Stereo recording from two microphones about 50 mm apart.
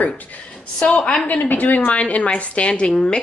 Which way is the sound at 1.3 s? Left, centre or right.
Left.